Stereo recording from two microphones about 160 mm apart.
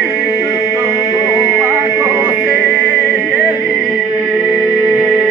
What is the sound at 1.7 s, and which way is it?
Music, 15° right (ahead or behind).